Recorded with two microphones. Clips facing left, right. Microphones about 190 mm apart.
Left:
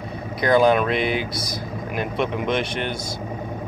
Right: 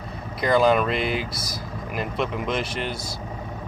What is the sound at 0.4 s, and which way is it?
Speech, centre (ahead or behind).